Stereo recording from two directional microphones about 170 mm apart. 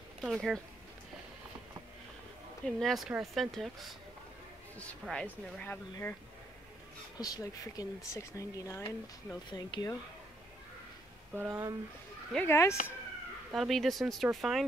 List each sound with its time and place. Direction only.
0.2 s speech: centre (ahead or behind)
2.6 s speech: centre (ahead or behind)
7.2 s speech: 20° left (ahead or behind)
11.3 s speech: 15° right (ahead or behind)
12.4 s speech: 15° left (ahead or behind)
13.5 s speech: centre (ahead or behind)